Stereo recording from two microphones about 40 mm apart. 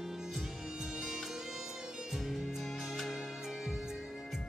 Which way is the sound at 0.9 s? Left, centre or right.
Centre.